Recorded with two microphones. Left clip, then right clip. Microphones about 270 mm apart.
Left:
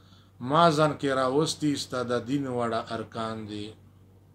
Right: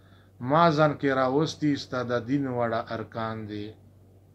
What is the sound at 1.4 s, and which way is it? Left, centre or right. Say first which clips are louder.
Speech: even; left.